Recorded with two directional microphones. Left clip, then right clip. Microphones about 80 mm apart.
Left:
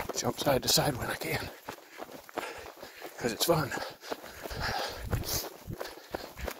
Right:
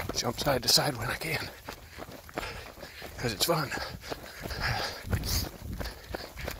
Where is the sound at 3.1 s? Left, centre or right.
Left.